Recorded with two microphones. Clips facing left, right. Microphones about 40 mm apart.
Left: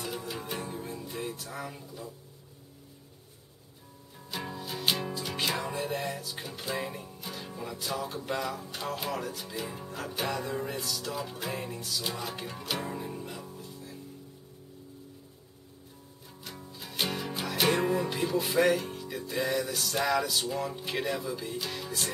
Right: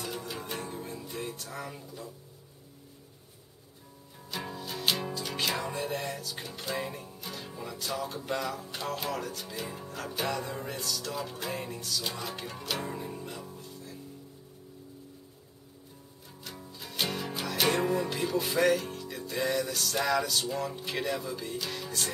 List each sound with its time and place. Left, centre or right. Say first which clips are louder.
0.0 s music: left 1 dB; centre
4.3 s music: even; centre
16.4 s music: even; centre